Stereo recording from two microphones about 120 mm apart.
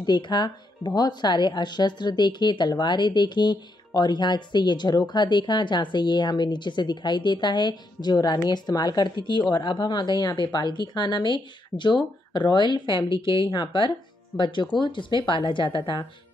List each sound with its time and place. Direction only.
0.0 s speech: 40° left (ahead or behind)